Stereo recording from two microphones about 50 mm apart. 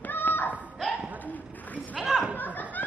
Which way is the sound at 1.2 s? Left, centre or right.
Left.